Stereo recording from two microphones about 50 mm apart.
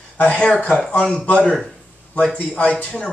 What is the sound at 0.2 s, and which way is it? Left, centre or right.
Speech, centre.